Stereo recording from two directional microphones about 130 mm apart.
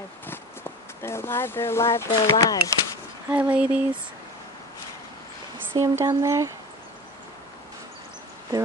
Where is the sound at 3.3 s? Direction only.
10° right (ahead or behind).